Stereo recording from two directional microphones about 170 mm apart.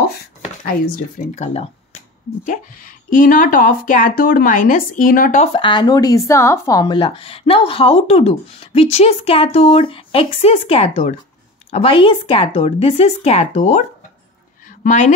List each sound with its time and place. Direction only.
1.3 s speech: 40° left (ahead or behind)
2.4 s speech: 50° left (ahead or behind)
5.4 s a woman's voice: 30° left (ahead or behind); by 15.1 s 45° left (ahead or behind)